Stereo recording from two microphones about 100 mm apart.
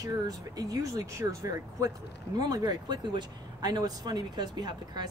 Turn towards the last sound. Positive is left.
turn(degrees=-45)  # may be behind; listen again after turning